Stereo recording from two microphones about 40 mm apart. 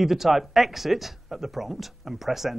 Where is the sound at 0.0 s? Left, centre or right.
Centre.